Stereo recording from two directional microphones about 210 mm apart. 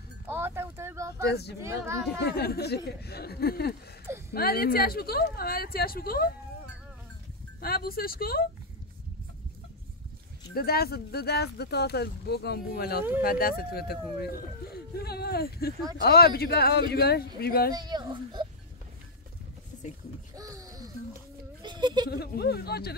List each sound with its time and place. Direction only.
0.3 s a sound: 10° right (ahead or behind)
1.2 s speech: 50° left (ahead or behind)
1.6 s speech: 15° right (ahead or behind)
2.2 s speech: 50° left (ahead or behind)
7.6 s speech: 45° left (ahead or behind)
10.5 s speech: 45° left (ahead or behind)
17.7 s a child's voice: 20° right (ahead or behind)
20.3 s music: 15° right (ahead or behind)
21.6 s a sound: 20° right (ahead or behind)
22.1 s speech: 50° left (ahead or behind)